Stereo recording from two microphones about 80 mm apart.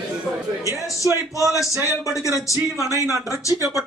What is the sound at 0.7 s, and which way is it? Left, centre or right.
A man's voice, left.